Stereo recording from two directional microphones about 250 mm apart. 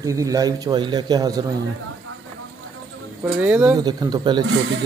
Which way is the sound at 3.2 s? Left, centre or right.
Centre.